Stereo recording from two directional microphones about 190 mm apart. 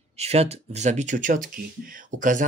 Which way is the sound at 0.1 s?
35° right (ahead or behind).